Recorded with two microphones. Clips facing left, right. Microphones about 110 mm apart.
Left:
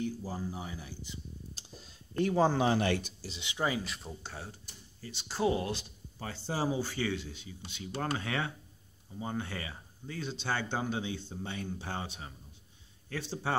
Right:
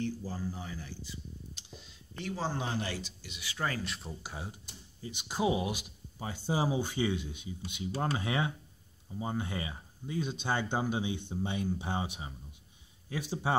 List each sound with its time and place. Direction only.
0.0 s speech: 15° left (ahead or behind)
1.5 s tick: 40° left (ahead or behind)
2.2 s speech: 60° left (ahead or behind)
3.3 s speech: 25° left (ahead or behind)
3.8 s speech: centre (ahead or behind)
4.3 s speech: 15° right (ahead or behind)